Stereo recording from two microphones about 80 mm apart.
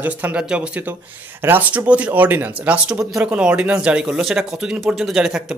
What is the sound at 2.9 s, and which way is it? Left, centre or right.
Speech, centre.